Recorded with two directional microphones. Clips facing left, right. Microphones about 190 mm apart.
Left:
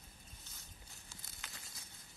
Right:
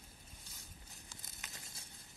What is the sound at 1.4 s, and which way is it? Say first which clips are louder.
Crumpling: right 1 dB; 20° right (ahead or behind).